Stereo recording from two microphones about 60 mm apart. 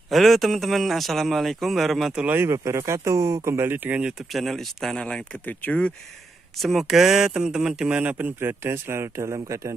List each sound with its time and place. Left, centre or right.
0.1 s speech: centre
2.2 s speech: right
2.5 s speech: right
4.3 s speech: centre
4.9 s speech: centre
6.6 s speech: centre
8.0 s a man's voice: right
8.4 s speech: right